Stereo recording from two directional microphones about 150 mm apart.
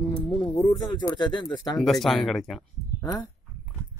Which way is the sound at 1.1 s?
30° left (ahead or behind).